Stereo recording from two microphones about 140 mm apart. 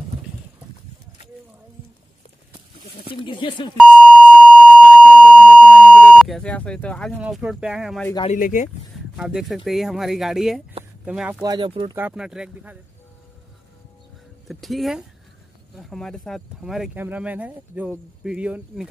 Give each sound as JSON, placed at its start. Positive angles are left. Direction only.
{"t": 2.7, "sound": "a sound", "side_deg": 35}
{"t": 3.7, "sound": "speech", "side_deg": -5}
{"t": 4.4, "sound": "alarm", "side_deg": 5}
{"t": 5.8, "sound": "speech", "side_deg": 0}
{"t": 7.2, "sound": "speech", "side_deg": -5}
{"t": 8.3, "sound": "speech", "side_deg": 65}
{"t": 9.1, "sound": "speech", "side_deg": -5}
{"t": 11.4, "sound": "speech", "side_deg": -35}
{"t": 12.1, "sound": "speech", "side_deg": -5}
{"t": 14.5, "sound": "speech", "side_deg": 0}